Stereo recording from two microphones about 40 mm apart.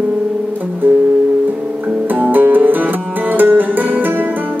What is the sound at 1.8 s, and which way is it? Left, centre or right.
Music, right.